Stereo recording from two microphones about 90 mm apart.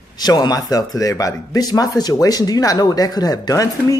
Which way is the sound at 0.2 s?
45° left (ahead or behind).